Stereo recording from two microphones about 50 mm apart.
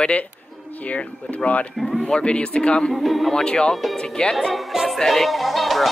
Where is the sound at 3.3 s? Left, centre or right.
Centre.